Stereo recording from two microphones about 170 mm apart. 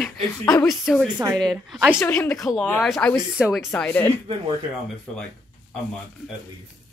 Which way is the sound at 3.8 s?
10° left (ahead or behind).